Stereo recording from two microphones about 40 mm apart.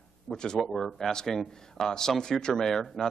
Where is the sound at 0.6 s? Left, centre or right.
Centre.